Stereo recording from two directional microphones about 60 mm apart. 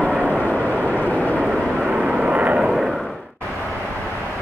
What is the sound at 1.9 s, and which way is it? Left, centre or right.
Vehicle, centre.